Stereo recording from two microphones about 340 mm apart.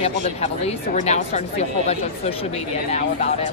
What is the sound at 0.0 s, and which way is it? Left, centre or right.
Speech, centre.